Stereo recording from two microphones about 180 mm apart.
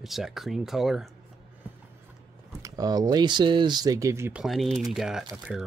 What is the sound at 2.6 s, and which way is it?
Speech, 20° right (ahead or behind).